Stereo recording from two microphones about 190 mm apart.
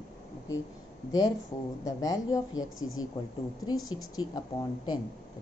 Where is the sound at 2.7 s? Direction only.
90° left.